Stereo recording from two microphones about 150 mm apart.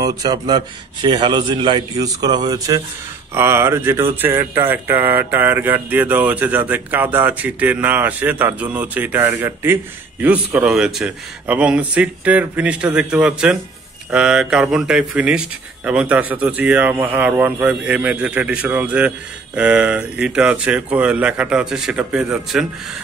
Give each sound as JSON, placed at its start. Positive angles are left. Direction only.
{"t": 0.0, "sound": "a man's voice", "side_deg": -25}